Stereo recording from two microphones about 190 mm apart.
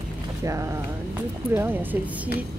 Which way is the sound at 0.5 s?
15° right (ahead or behind).